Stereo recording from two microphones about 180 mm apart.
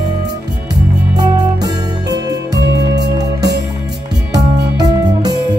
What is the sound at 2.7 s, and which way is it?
Music, 70° right (ahead or behind).